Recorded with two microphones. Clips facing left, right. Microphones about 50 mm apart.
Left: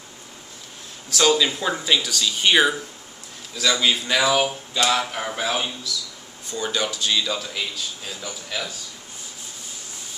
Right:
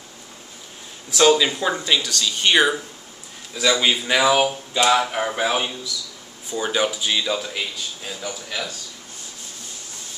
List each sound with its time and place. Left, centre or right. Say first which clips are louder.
1.1 s a man's voice: right 3 dB; centre
1.5 s speech: right 1 dB; centre
3.5 s a man's voice: right 2 dB; centre